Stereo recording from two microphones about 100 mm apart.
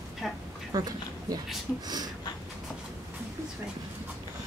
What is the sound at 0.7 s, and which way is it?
Speech, 40° right (ahead or behind).